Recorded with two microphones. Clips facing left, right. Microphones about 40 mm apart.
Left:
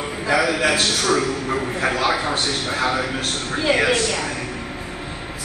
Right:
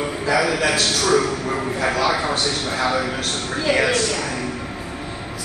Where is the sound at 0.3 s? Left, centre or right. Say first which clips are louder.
Left 1 dB; left.